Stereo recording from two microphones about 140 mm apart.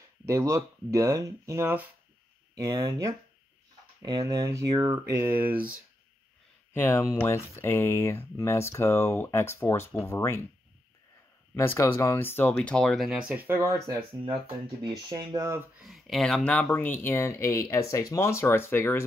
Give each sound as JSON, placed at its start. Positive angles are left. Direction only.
{"t": 0.3, "sound": "speech", "side_deg": -20}
{"t": 6.7, "sound": "speech", "side_deg": 15}
{"t": 11.5, "sound": "speech", "side_deg": 15}
{"t": 15.8, "sound": "speech", "side_deg": 0}